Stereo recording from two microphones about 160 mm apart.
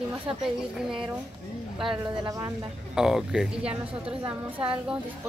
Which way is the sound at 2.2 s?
25° right (ahead or behind).